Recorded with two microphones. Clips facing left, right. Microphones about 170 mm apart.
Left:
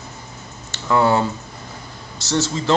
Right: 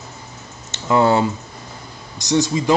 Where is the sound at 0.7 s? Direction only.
20° right (ahead or behind).